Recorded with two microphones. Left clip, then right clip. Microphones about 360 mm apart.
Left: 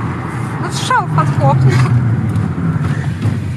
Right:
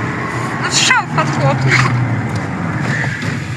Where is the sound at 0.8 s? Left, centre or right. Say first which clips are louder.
Right 2 dB; centre.